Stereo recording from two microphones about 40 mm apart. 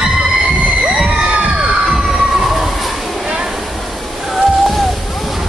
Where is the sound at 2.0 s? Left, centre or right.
Centre.